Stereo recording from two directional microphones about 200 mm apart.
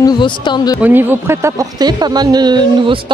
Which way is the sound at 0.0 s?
20° left (ahead or behind).